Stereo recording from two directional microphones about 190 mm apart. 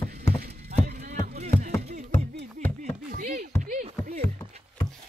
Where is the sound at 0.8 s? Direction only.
50° right (ahead or behind).